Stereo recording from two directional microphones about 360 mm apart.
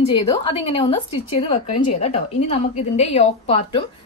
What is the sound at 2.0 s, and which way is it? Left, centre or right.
A woman's voice, centre.